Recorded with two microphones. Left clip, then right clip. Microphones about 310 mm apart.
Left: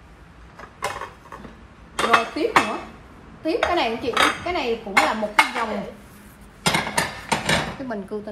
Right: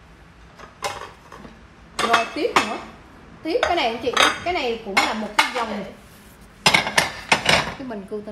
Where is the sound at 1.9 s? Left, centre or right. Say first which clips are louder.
Left 1 dB; centre.